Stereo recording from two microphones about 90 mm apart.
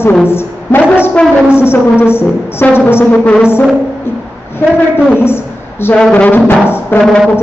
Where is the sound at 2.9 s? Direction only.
25° left (ahead or behind).